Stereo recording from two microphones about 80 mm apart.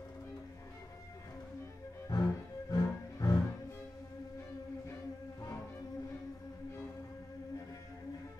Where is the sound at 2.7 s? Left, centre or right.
Left.